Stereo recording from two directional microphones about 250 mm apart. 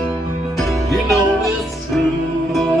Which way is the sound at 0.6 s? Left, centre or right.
Centre.